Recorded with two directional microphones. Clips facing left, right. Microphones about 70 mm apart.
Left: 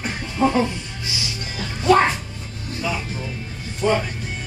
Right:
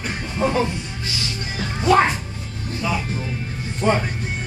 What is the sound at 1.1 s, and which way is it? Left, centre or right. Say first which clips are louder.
Music: even; centre.